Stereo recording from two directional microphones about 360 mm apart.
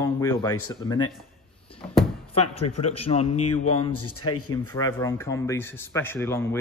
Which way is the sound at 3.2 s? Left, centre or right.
Left.